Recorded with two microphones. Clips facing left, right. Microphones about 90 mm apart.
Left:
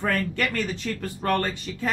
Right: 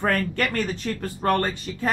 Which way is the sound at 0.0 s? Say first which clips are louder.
Right 2 dB; 50° right (ahead or behind).